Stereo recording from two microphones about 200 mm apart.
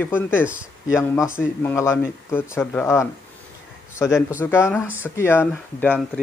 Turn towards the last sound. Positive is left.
turn(degrees=10)  # may be behind; listen again after turning